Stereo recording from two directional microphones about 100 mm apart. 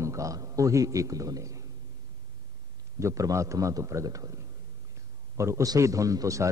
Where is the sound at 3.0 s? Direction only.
30° right (ahead or behind).